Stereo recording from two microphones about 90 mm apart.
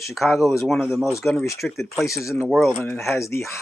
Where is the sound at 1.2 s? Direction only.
15° left (ahead or behind).